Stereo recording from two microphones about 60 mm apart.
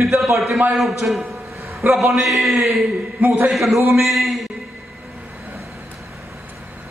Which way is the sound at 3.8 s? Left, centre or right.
Right.